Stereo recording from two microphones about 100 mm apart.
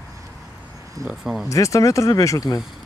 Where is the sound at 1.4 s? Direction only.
30° left (ahead or behind).